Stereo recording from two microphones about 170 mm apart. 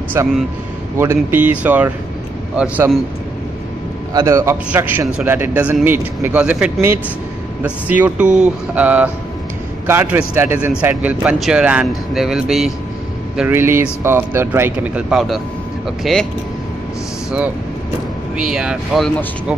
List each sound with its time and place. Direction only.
0.2 s a man's voice: 15° right (ahead or behind)
4.1 s a man's voice: 20° right (ahead or behind); by 12.7 s centre (ahead or behind)
13.4 s a man's voice: 15° right (ahead or behind)
18.3 s speech: 5° right (ahead or behind)